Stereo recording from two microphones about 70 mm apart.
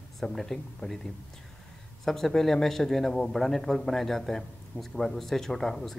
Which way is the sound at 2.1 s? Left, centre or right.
Centre.